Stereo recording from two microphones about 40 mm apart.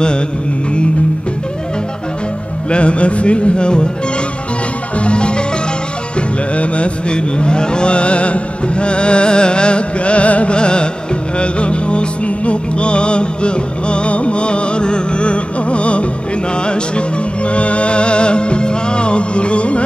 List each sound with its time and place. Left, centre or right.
2.7 s speech: left
5.0 s marimba: left
6.5 s music: left
16.6 s speech: left
17.5 s music: left